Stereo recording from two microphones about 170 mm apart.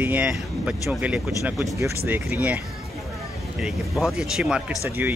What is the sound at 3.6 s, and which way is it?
Speech, centre (ahead or behind).